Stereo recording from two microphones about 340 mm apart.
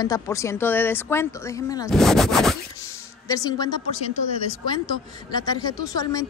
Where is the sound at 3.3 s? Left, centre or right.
Centre.